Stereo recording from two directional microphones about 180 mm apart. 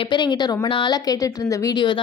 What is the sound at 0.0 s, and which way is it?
A woman's voice, 25° left (ahead or behind).